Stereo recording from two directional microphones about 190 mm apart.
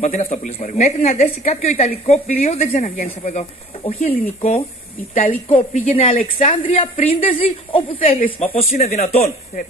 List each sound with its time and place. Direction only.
0.0 s speech: 40° left (ahead or behind)